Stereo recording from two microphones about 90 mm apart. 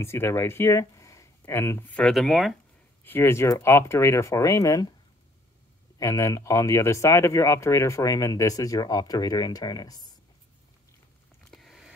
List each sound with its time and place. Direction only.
0.0 s speech: 30° left (ahead or behind)
1.9 s speech: 15° left (ahead or behind)
2.1 s speech: centre (ahead or behind)
3.0 s speech: 25° left (ahead or behind); by 4.9 s 40° left (ahead or behind)
5.9 s speech: 35° left (ahead or behind)
11.5 s a sound: centre (ahead or behind)